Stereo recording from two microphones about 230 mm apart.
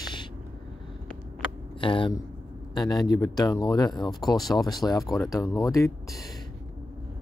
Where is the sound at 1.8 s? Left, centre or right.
Left.